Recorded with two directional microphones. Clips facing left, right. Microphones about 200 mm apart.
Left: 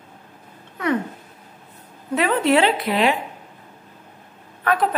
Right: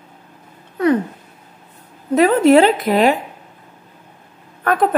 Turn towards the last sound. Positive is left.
turn(degrees=-45)  # may be behind; listen again after turning